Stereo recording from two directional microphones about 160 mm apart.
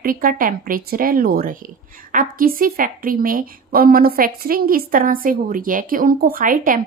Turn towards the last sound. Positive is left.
turn(degrees=-55)  # may be behind; listen again after turning